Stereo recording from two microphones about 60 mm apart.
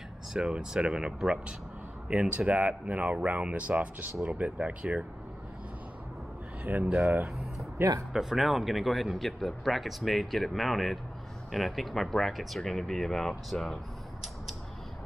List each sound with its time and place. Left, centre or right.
0.3 s speech: centre
6.6 s speech: right
8.1 s speech: centre